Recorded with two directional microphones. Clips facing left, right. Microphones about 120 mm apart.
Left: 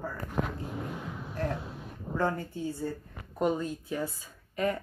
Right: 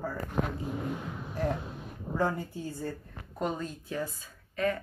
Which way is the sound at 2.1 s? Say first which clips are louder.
Even; 5° right (ahead or behind).